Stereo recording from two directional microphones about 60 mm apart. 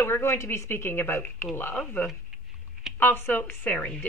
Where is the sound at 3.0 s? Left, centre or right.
Left.